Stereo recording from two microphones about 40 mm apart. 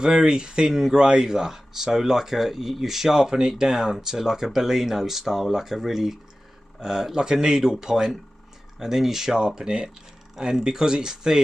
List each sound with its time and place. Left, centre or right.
0.0 s speech: centre